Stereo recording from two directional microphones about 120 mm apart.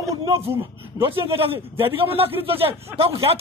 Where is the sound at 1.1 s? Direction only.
50° right (ahead or behind).